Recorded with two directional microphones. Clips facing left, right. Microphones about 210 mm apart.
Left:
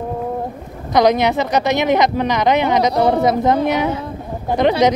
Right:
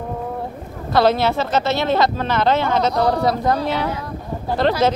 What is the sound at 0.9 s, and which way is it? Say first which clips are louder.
Speech: left 2 dB; 15° left (ahead or behind).